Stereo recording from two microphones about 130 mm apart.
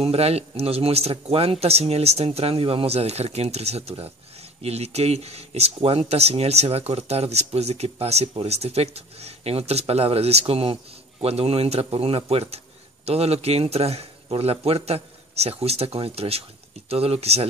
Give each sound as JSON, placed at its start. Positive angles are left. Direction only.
{"t": 0.0, "sound": "speech", "side_deg": -50}